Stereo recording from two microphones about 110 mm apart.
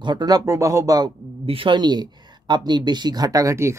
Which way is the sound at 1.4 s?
55° right (ahead or behind).